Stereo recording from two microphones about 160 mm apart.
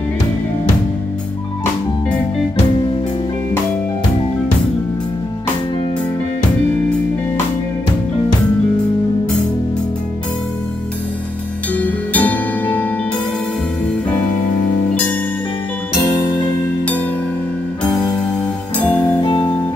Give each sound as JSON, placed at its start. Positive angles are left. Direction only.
{"t": 11.7, "sound": "music", "side_deg": 10}
{"t": 18.8, "sound": "music", "side_deg": 10}
{"t": 19.2, "sound": "music", "side_deg": 30}